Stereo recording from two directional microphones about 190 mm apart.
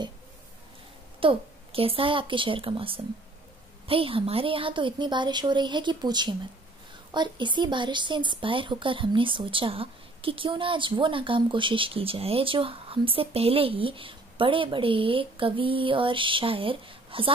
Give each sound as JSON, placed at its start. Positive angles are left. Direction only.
{"t": 1.2, "sound": "a woman's voice", "side_deg": -30}